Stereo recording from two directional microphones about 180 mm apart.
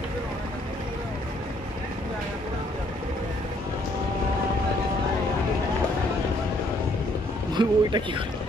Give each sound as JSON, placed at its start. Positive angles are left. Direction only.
{"t": 7.5, "sound": "speech", "side_deg": -25}